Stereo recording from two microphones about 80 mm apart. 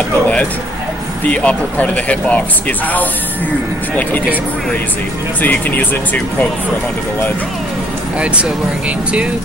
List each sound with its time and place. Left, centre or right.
1.2 s speech: centre
5.4 s speech: left
8.2 s speech: centre